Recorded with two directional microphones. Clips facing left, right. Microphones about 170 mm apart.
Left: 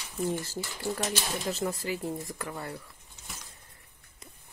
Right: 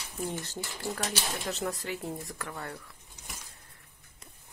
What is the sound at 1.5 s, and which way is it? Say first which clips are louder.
Speech: left 2 dB; centre (ahead or behind).